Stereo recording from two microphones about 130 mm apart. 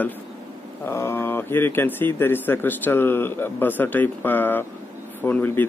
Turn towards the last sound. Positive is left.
turn(degrees=15)  # may be behind; listen again after turning